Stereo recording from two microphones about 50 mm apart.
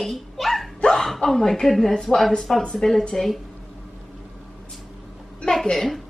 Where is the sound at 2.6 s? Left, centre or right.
Centre.